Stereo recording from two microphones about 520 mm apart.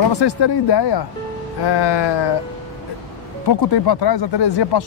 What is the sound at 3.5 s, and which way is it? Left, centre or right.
Speech, left.